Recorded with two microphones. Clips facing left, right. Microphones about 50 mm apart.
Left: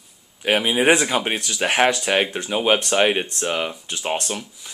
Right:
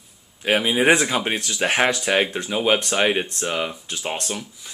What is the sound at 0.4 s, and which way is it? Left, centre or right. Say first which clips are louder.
Speech: even; centre.